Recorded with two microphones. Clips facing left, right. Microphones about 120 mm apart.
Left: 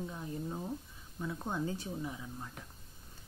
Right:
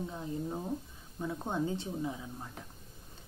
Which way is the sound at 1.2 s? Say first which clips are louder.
Right 3 dB; 25° right (ahead or behind).